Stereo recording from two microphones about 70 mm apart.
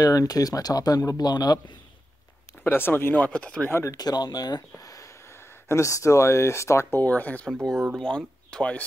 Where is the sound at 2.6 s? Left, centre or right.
Left.